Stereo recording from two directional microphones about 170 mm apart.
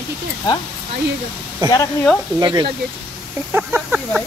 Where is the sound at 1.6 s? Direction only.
25° right (ahead or behind).